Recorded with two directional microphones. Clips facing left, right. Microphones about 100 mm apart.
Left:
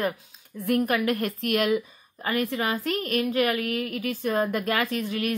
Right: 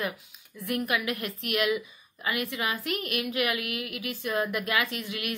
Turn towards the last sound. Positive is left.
turn(degrees=40)  # may be behind; listen again after turning